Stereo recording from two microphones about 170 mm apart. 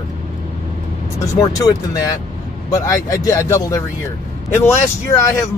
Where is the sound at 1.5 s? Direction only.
20° left (ahead or behind).